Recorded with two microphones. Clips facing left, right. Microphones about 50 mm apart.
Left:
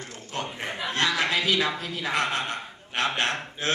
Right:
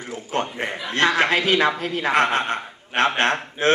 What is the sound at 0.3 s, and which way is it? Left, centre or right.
A man's voice, right.